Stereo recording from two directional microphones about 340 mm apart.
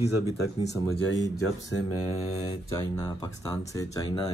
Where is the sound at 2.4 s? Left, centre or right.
Centre.